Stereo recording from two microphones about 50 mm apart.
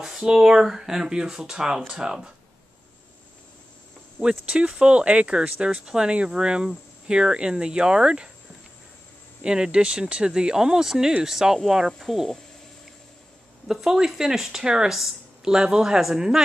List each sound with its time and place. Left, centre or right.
0.0 s speech: centre
4.2 s speech: centre
9.4 s speech: centre
13.7 s speech: centre